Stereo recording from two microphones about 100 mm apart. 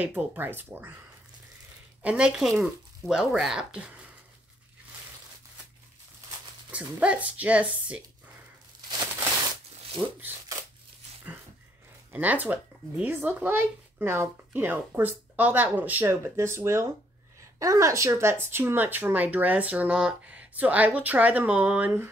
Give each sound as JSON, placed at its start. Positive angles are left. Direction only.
{"t": 0.0, "sound": "a child's voice", "side_deg": -20}
{"t": 2.0, "sound": "speech", "side_deg": -10}
{"t": 6.7, "sound": "speech", "side_deg": -15}
{"t": 10.0, "sound": "speech", "side_deg": -5}
{"t": 12.1, "sound": "a child's voice", "side_deg": -15}